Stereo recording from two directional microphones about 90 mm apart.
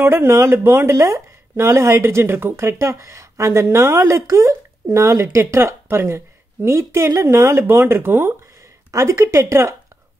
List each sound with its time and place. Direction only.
0.0 s speech: 30° right (ahead or behind)